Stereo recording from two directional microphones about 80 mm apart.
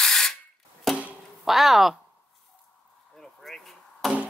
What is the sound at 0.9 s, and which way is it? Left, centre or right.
Music, centre.